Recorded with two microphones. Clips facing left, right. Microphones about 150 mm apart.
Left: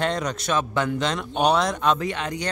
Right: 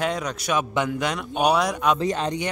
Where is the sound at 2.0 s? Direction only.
35° right (ahead or behind).